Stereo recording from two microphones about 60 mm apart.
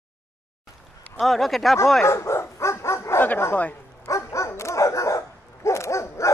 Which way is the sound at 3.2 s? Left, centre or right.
Left.